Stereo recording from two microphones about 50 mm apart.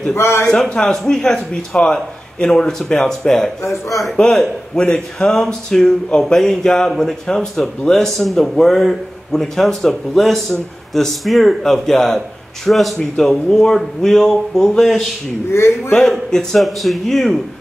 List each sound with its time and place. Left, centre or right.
0.1 s a man's voice: left
0.7 s speech: centre
15.5 s a man's voice: left
16.0 s speech: centre